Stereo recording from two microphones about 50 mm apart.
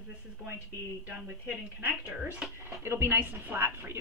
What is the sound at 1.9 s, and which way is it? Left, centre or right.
Speech, centre.